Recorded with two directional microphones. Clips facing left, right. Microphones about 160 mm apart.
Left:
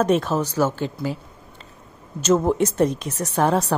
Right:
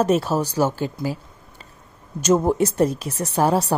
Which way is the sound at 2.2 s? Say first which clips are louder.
Right 1 dB; 15° right (ahead or behind).